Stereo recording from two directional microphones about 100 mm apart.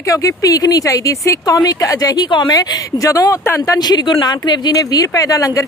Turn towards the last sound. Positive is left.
turn(degrees=35)  # may be behind; listen again after turning